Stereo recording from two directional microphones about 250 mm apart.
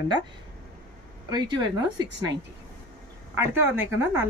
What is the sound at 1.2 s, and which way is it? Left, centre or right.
Speech, centre.